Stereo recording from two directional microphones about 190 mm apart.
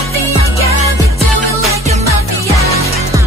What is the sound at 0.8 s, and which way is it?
Music, 15° right (ahead or behind).